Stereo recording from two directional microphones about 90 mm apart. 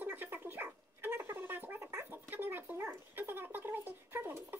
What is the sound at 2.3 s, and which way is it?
Dog, 20° right (ahead or behind).